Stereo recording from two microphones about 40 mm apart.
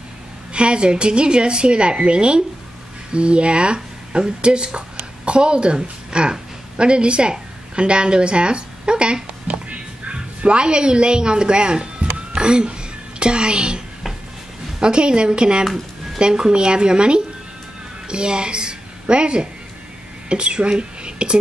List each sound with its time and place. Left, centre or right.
0.5 s a woman's voice: right
14.8 s a woman's voice: right
15.6 s music: centre
16.2 s a woman's voice: right
21.0 s a sound: right